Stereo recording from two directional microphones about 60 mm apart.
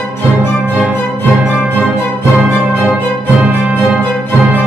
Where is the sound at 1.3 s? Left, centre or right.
Right.